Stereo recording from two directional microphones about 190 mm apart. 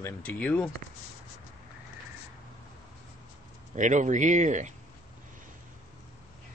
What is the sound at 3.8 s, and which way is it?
Speech, 40° right (ahead or behind).